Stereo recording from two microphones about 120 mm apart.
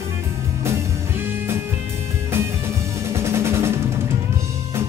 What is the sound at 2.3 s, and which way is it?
Music, 20° right (ahead or behind).